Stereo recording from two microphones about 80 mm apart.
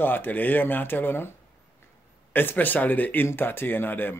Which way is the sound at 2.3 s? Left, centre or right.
Left.